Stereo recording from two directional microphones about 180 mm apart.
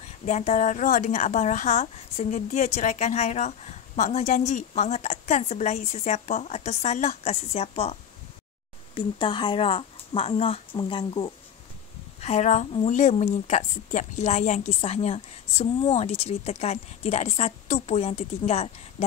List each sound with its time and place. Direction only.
0.2 s a woman's voice: 35° left (ahead or behind)
8.9 s speech: 30° left (ahead or behind)
12.2 s a woman's voice: 40° left (ahead or behind)